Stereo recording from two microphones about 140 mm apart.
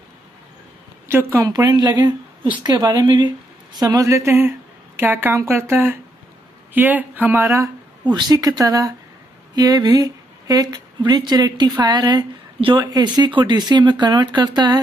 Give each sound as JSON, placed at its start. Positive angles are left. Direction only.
{"t": 1.0, "sound": "a woman's voice", "side_deg": -20}
{"t": 1.5, "sound": "a woman's voice", "side_deg": -30}